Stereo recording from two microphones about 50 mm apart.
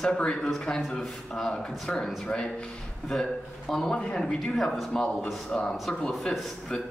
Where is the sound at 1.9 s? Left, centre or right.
Left; by 5.0 s centre.